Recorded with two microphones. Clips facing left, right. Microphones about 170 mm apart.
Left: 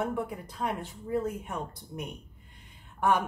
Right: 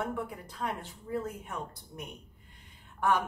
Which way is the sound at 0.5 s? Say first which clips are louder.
Left 3 dB; 15° left (ahead or behind).